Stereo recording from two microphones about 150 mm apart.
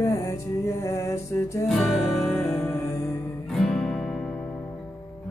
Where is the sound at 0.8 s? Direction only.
20° left (ahead or behind).